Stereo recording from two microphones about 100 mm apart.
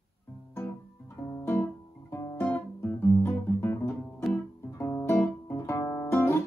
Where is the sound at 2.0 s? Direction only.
30° left (ahead or behind).